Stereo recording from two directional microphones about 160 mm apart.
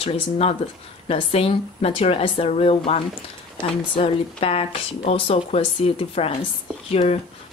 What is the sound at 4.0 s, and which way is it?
Speech, 35° left (ahead or behind).